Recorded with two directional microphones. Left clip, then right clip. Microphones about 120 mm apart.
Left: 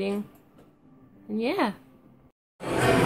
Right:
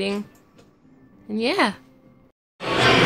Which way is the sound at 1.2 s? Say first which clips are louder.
Right 6 dB; 5° right (ahead or behind).